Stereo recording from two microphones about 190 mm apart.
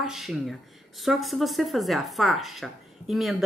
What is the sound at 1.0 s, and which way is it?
Speech, centre (ahead or behind).